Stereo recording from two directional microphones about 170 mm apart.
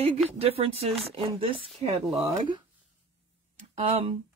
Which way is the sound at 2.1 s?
20° right (ahead or behind).